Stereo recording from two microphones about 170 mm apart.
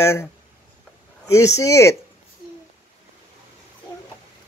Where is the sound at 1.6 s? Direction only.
15° left (ahead or behind).